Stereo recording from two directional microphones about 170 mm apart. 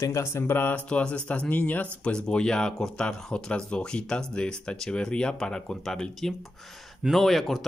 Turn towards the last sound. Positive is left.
turn(degrees=0)  # may be behind; listen again after turning